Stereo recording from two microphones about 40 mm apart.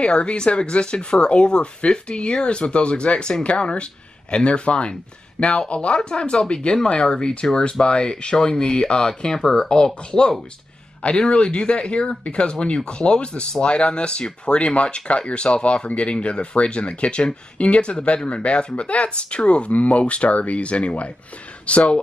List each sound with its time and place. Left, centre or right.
0.0 s speech: left